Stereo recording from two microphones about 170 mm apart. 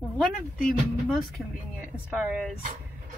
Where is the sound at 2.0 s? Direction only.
5° right (ahead or behind).